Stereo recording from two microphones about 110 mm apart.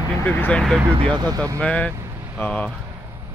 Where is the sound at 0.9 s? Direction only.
50° right (ahead or behind); by 1.6 s 30° right (ahead or behind).